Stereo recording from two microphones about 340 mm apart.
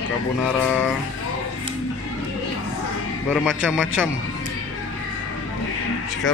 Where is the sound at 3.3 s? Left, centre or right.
Centre.